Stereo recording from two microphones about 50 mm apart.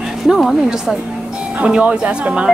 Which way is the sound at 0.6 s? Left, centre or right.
Centre.